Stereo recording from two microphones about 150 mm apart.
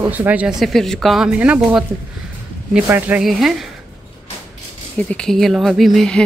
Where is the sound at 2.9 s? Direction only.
10° right (ahead or behind).